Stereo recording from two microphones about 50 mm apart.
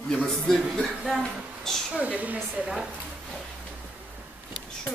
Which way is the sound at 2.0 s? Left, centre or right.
Right.